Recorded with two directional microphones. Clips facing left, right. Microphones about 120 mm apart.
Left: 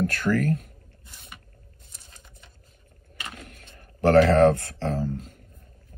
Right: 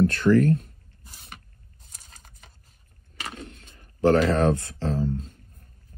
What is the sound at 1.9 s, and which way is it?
Patter, 40° right (ahead or behind).